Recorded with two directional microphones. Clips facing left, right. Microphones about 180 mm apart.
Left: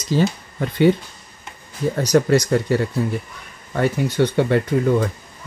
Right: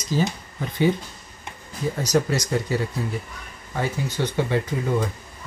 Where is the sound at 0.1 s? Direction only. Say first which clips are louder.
Left 5 dB; 65° left (ahead or behind).